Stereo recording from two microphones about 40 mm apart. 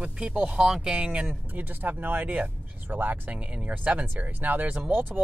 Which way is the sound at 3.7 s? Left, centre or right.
Right.